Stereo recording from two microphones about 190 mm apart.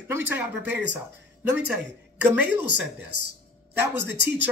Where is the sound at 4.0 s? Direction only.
70° right (ahead or behind).